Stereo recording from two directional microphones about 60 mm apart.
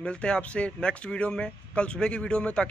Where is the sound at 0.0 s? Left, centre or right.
Centre.